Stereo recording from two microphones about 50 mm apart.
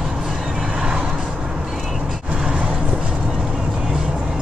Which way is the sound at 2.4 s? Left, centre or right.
Centre.